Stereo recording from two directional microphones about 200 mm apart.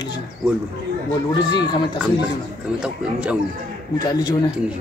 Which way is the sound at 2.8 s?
5° right (ahead or behind).